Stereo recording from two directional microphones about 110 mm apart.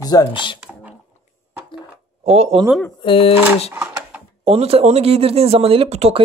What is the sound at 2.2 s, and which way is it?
Speech, 70° right (ahead or behind).